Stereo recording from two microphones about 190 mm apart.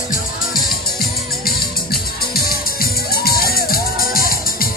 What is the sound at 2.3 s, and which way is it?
Music, 55° left (ahead or behind).